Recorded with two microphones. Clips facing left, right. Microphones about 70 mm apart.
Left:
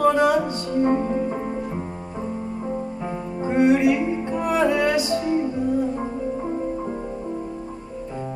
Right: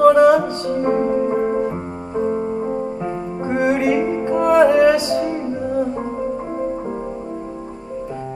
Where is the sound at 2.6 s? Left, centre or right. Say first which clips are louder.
Right 5 dB; right.